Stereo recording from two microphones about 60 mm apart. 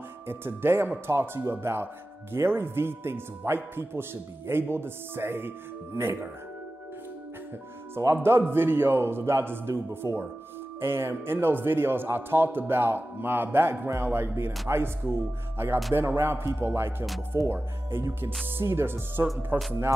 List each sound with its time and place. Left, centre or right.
0.3 s speech: right
7.9 s speech: right
19.5 s speech: right